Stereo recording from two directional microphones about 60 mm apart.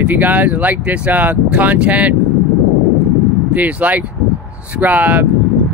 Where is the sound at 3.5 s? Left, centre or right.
Right.